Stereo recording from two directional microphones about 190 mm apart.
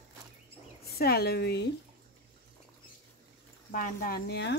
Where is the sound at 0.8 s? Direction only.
55° left (ahead or behind).